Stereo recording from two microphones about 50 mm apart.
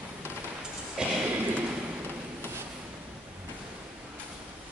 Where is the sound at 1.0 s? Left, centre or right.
Centre.